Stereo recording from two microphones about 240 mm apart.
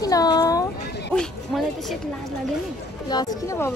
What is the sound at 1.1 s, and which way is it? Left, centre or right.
Speech, centre.